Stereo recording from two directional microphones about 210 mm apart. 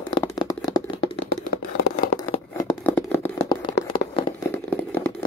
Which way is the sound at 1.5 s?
45° left (ahead or behind).